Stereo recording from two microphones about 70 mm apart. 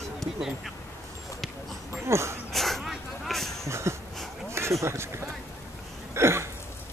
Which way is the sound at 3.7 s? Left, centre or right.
Right.